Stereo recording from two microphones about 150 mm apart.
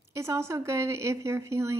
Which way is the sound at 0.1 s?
20° right (ahead or behind).